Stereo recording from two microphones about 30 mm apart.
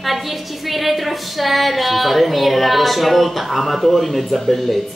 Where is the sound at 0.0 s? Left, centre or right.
Centre.